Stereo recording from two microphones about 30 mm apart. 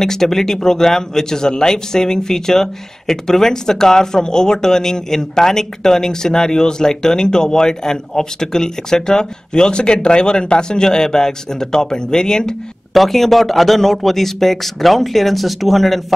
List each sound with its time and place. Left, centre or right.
0.0 s speech: centre
12.9 s a man's voice: centre